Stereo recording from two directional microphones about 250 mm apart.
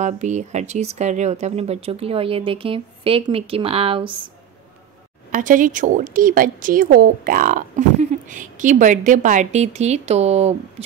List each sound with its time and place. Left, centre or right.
0.0 s speech: right
5.3 s speech: right